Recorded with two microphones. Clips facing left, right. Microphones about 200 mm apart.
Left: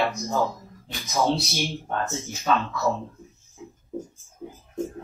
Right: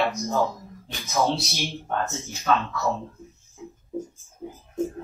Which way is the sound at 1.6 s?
Centre (ahead or behind).